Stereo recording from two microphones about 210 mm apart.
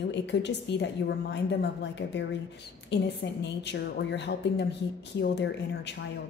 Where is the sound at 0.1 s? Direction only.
55° left (ahead or behind).